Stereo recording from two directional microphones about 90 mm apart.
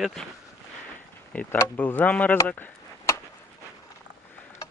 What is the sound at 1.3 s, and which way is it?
Speech, 15° left (ahead or behind).